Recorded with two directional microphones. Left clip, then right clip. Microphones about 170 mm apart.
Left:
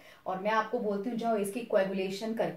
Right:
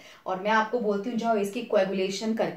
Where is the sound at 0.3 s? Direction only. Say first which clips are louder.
Right 5 dB; 25° right (ahead or behind).